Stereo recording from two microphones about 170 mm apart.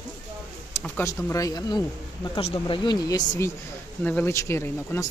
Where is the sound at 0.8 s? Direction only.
15° left (ahead or behind).